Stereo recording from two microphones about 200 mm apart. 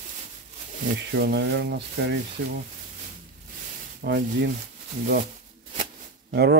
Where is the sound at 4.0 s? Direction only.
55° right (ahead or behind).